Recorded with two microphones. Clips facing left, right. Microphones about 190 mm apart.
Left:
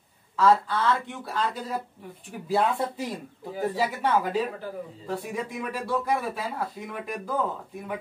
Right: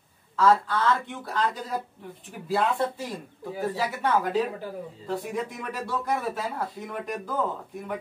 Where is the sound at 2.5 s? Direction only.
15° left (ahead or behind).